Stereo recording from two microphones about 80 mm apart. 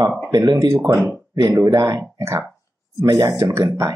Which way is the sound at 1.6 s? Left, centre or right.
Right.